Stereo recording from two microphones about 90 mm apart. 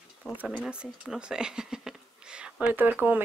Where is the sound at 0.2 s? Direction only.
10° left (ahead or behind).